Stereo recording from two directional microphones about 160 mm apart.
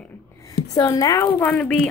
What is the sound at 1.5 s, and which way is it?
Speech, 5° left (ahead or behind).